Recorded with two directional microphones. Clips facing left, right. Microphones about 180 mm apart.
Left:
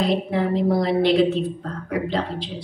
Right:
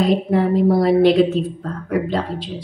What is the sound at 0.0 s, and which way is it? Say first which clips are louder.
Speech: right 5 dB; 50° right (ahead or behind).